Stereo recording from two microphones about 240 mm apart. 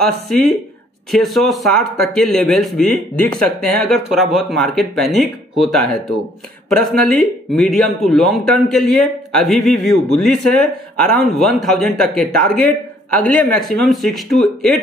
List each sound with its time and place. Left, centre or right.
0.0 s speech: centre